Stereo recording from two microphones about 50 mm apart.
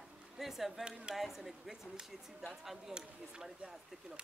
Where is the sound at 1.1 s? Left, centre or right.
Centre.